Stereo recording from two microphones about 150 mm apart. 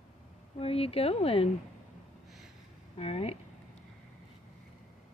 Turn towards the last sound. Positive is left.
turn(degrees=40)  # may be behind; listen again after turning